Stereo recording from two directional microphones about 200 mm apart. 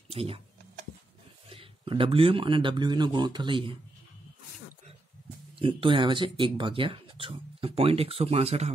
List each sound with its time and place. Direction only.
0.1 s speech: 30° right (ahead or behind)
1.5 s speech: 25° right (ahead or behind)
5.6 s speech: 25° right (ahead or behind)